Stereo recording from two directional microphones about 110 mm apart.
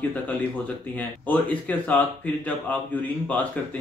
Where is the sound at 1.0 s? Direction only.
15° left (ahead or behind).